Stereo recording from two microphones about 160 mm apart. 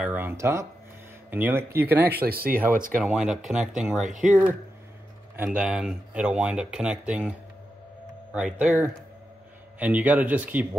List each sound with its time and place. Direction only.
0.0 s speech: 10° right (ahead or behind)
2.2 s speech: 70° right (ahead or behind)
2.7 s speech: 55° right (ahead or behind)
3.0 s speech: 5° right (ahead or behind)